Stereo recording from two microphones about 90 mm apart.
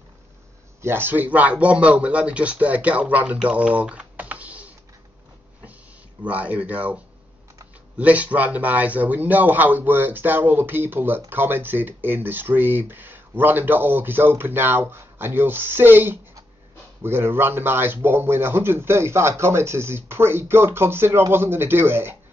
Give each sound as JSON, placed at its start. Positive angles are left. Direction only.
{"t": 0.8, "sound": "speech", "side_deg": -25}
{"t": 6.2, "sound": "speech", "side_deg": -15}
{"t": 8.0, "sound": "speech", "side_deg": -15}